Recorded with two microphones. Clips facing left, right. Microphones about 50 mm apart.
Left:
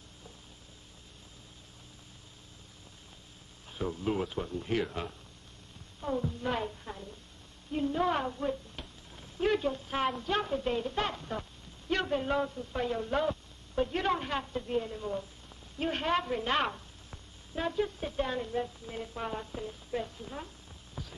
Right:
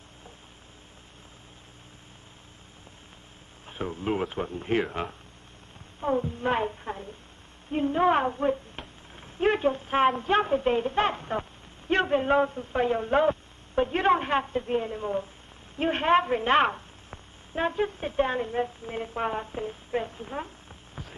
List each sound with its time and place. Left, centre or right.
3.6 s speech: right
5.9 s hum: right
6.3 s a man's voice: right